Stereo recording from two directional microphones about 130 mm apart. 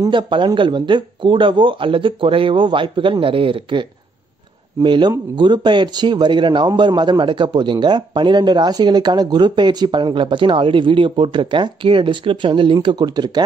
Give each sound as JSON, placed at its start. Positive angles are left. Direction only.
{"t": 0.0, "sound": "a man's voice", "side_deg": -40}
{"t": 4.8, "sound": "a man's voice", "side_deg": -40}